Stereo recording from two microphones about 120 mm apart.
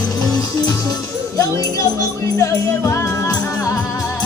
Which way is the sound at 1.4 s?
30° left (ahead or behind).